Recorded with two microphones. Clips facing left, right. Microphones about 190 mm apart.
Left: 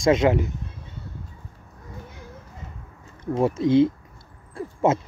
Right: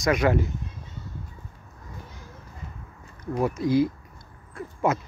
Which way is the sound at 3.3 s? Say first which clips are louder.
Left 4 dB; 25° left (ahead or behind).